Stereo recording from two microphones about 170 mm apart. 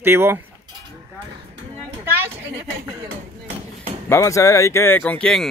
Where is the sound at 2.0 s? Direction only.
15° right (ahead or behind).